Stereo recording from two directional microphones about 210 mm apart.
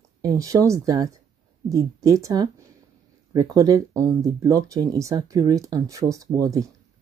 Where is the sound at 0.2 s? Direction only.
15° right (ahead or behind).